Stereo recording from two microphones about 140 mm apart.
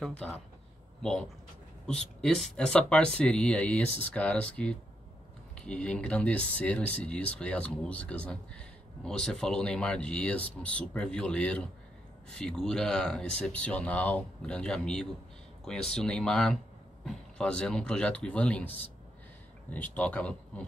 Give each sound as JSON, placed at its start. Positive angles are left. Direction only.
{"t": 0.0, "sound": "speech", "side_deg": 5}